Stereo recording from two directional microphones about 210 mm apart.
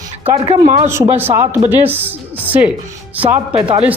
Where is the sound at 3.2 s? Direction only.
25° right (ahead or behind).